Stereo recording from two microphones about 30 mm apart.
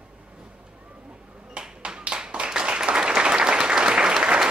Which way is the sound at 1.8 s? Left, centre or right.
Right.